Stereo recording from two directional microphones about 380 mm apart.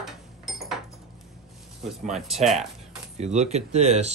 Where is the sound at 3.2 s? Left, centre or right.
Centre.